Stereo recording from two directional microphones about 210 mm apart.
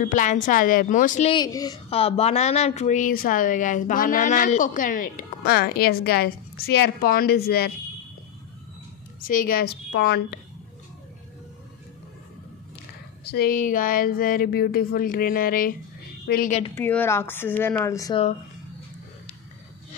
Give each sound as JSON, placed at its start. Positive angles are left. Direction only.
{"t": 0.0, "sound": "speech", "side_deg": 35}
{"t": 1.3, "sound": "speech", "side_deg": 20}
{"t": 9.2, "sound": "speech", "side_deg": 40}
{"t": 13.3, "sound": "a woman's voice", "side_deg": 45}
{"t": 16.7, "sound": "speech", "side_deg": 10}